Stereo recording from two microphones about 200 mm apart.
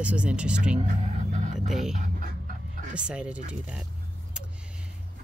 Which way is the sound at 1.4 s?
35° right (ahead or behind).